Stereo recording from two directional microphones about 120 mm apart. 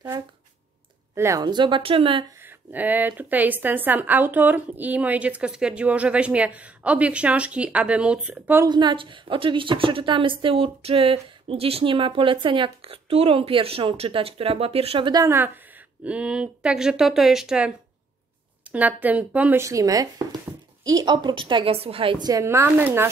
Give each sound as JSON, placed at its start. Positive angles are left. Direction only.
{"t": 1.1, "sound": "speech", "side_deg": -25}
{"t": 1.4, "sound": "a woman's voice", "side_deg": -40}
{"t": 2.7, "sound": "a woman's voice", "side_deg": -15}
{"t": 8.6, "sound": "a woman's voice", "side_deg": -40}
{"t": 15.2, "sound": "a woman's voice", "side_deg": -20}
{"t": 19.6, "sound": "a woman's voice", "side_deg": -25}
{"t": 22.4, "sound": "speech", "side_deg": -20}